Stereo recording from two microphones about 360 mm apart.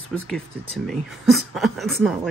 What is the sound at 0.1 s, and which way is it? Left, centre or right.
Speech, centre.